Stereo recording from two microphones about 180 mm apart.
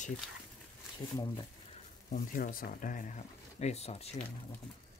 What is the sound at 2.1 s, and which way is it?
Speech, 50° left (ahead or behind).